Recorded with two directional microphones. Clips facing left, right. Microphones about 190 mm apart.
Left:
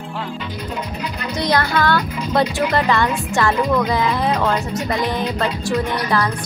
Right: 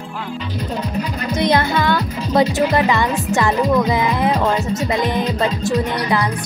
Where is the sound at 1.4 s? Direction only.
20° right (ahead or behind).